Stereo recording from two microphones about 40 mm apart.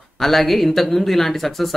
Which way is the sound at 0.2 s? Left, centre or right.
Centre.